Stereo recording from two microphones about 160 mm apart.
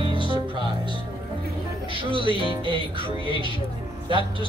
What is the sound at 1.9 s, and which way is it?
Speech, 30° right (ahead or behind).